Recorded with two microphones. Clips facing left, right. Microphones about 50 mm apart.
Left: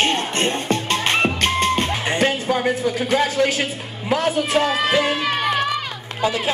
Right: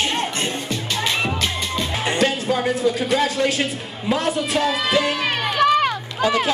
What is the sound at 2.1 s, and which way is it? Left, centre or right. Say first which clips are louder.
Music: right 1 dB; left.